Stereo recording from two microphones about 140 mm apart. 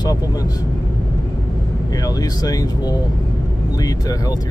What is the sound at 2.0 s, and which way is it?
Speech, 25° left (ahead or behind).